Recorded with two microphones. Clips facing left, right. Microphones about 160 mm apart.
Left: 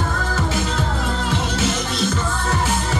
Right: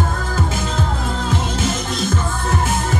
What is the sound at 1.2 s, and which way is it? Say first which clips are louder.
Music: right 1 dB; 45° right (ahead or behind).